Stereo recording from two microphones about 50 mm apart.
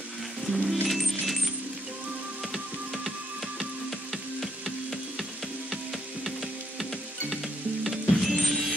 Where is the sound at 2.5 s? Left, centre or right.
Centre.